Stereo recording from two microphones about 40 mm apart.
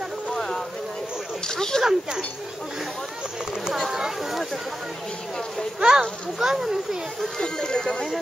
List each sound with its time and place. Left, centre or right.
0.3 s a sound: centre
1.5 s speech: centre
1.8 s a child's voice: centre
3.7 s a child's voice: centre
5.8 s a child's voice: centre
7.2 s speech: centre